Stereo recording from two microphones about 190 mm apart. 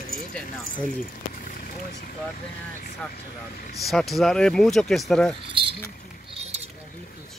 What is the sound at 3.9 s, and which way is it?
Speech, centre (ahead or behind).